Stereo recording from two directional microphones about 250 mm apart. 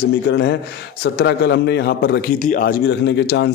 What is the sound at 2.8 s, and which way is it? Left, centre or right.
Speech, left.